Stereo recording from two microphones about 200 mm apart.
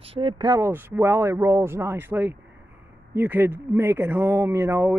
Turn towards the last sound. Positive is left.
turn(degrees=-10)  # may be behind; listen again after turning